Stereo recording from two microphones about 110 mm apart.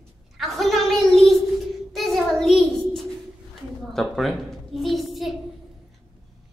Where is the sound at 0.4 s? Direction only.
Centre (ahead or behind).